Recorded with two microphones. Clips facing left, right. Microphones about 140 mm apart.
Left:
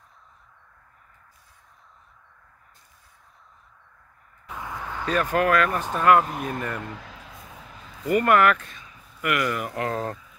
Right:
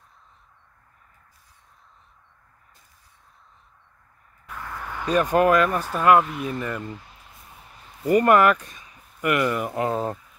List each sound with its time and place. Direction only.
4.5 s a sound: 15° left (ahead or behind)
4.9 s speech: 15° right (ahead or behind)
6.2 s speech: 45° left (ahead or behind)
6.8 s a sound: 90° left
8.1 s speech: 35° right (ahead or behind)
8.4 s speech: 15° right (ahead or behind)
9.2 s speech: 25° right (ahead or behind)